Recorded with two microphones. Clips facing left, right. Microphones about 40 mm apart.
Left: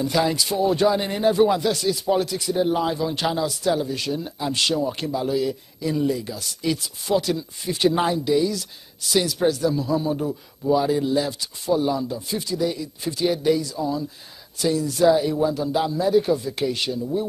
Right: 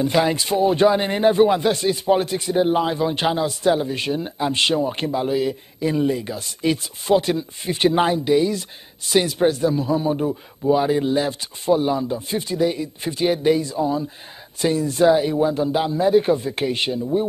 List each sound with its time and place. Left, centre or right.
0.0 s a man's voice: right